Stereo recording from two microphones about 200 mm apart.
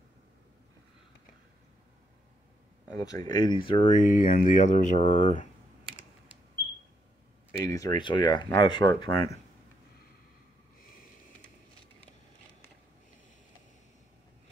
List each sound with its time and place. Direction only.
3.0 s speech: 20° left (ahead or behind); by 5.5 s 35° left (ahead or behind)
7.6 s speech: 15° left (ahead or behind)